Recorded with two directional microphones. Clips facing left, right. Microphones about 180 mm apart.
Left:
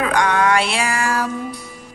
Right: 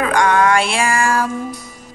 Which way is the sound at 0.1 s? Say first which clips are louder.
Right 4 dB; 45° right (ahead or behind).